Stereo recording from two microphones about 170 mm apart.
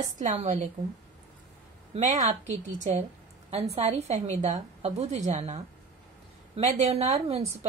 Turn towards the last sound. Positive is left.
turn(degrees=-35)  # may be behind; listen again after turning